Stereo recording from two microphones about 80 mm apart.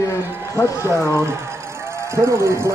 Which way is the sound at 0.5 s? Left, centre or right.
Left.